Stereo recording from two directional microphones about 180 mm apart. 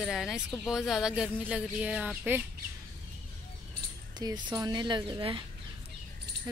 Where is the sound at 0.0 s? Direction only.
Centre (ahead or behind).